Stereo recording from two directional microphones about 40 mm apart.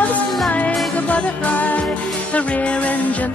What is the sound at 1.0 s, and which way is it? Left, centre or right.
Music, left.